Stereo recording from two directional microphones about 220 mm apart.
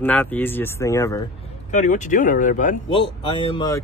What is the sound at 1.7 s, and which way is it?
Speech, 35° left (ahead or behind).